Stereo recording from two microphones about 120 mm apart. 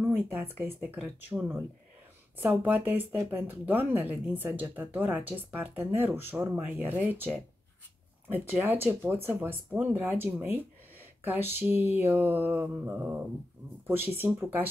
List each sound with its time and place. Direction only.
0.0 s speech: 20° right (ahead or behind)
8.5 s speech: 15° right (ahead or behind)
11.6 s speech: 15° right (ahead or behind)